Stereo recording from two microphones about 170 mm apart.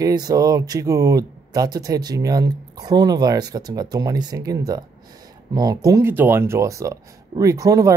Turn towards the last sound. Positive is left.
turn(degrees=-20)  # may be behind; listen again after turning